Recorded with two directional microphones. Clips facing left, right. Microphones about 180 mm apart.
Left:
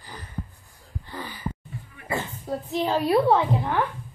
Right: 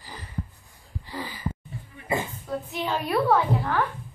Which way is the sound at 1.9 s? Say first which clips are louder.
Right 2 dB; 20° right (ahead or behind).